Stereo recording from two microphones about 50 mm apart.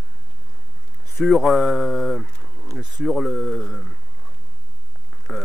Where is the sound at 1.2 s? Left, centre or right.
Centre.